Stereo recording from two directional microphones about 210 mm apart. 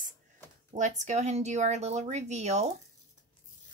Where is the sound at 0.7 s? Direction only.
35° right (ahead or behind).